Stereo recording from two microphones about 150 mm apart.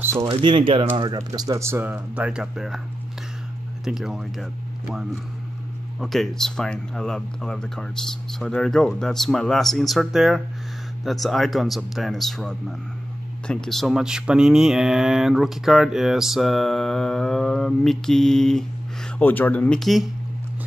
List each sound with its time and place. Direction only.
0.2 s speech: 40° right (ahead or behind); by 2.8 s 5° right (ahead or behind)
3.8 s speech: 5° right (ahead or behind)